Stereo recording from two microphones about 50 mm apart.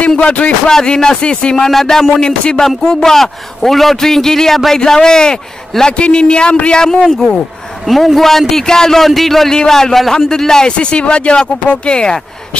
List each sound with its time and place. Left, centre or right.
0.2 s a man's voice: left
0.7 s a man's voice: centre
1.7 s a man's voice: centre
2.1 s a man's voice: centre
7.8 s a man's voice: centre